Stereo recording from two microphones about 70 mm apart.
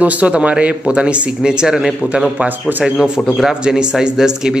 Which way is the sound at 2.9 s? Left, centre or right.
Centre.